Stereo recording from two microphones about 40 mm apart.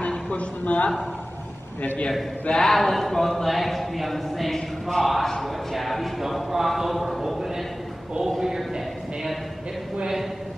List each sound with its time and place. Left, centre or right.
0.3 s speech: left
2.5 s a man's voice: centre